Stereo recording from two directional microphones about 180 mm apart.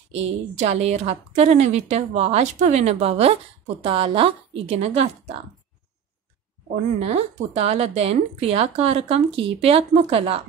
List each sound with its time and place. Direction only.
0.1 s a woman's voice: 35° right (ahead or behind)
7.0 s a woman's voice: 35° right (ahead or behind)